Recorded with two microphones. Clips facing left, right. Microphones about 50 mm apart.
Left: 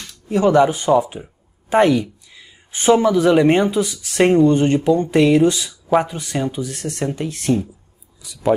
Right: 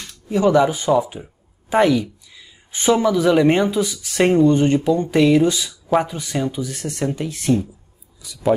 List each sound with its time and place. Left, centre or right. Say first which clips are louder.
0.3 s speech: left 1 dB; left
0.9 s speech: left 1 dB; centre
1.7 s a sound: left 1 dB; centre
3.2 s speech: left 1 dB; centre
6.7 s speech: left 1 dB; centre
7.5 s speech: even; centre